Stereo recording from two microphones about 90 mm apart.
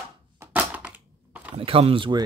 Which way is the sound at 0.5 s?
20° right (ahead or behind).